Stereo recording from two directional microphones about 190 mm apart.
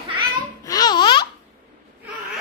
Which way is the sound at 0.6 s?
20° left (ahead or behind).